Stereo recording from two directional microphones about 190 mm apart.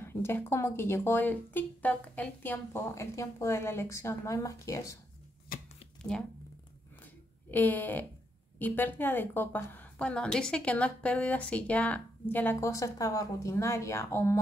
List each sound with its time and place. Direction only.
0.0 s a woman's voice: 10° left (ahead or behind)
5.5 s chopping: 50° left (ahead or behind)
7.5 s a woman's voice: 10° left (ahead or behind)